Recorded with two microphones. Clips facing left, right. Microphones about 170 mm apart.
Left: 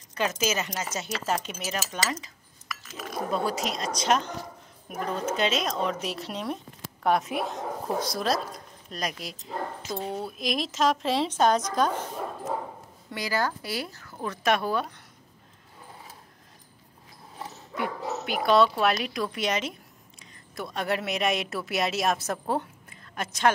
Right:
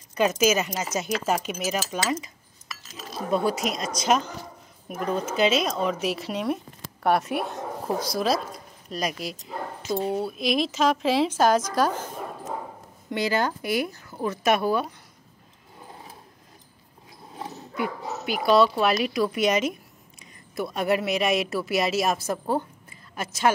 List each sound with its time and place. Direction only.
0.1 s speech: 15° right (ahead or behind)
2.7 s chink: 25° right (ahead or behind)
3.3 s speech: 10° right (ahead or behind)
3.7 s a woman's voice: 35° left (ahead or behind)
4.0 s a woman's voice: 5° right (ahead or behind)
13.1 s speech: 25° right (ahead or behind)
17.4 s a woman's voice: 5° right (ahead or behind)